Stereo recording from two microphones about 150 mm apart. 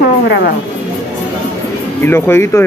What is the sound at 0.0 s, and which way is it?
Music, 80° left.